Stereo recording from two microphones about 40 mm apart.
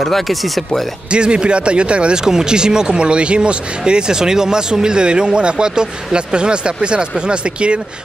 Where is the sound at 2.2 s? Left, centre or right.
Centre.